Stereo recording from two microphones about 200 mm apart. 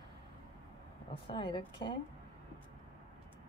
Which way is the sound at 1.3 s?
25° left (ahead or behind).